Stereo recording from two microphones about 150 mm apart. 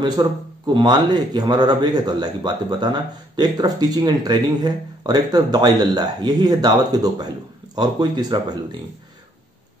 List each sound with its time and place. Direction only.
0.0 s speech: 25° right (ahead or behind)